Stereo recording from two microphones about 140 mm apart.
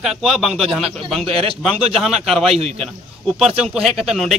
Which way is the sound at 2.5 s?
45° right (ahead or behind).